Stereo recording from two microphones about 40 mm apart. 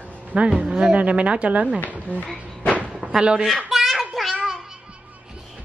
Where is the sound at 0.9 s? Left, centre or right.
Right.